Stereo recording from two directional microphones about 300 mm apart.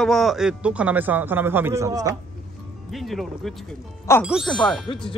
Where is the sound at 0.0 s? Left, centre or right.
Centre.